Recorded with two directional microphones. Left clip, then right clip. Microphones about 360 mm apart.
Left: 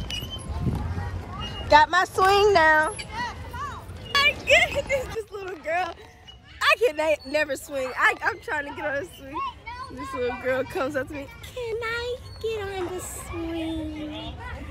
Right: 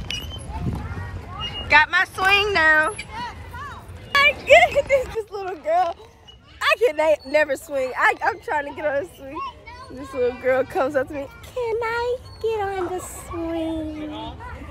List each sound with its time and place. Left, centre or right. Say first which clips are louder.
1.7 s speech: right 1 dB; centre